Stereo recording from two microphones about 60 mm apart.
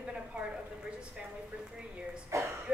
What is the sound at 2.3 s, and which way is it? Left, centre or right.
Speech, right.